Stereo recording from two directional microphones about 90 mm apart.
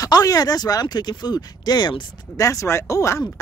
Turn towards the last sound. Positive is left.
turn(degrees=35)  # may be behind; listen again after turning